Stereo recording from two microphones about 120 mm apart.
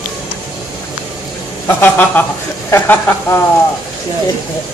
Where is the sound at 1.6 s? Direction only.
15° left (ahead or behind).